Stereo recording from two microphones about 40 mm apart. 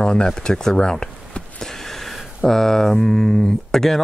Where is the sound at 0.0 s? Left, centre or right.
Left; by 2.2 s centre.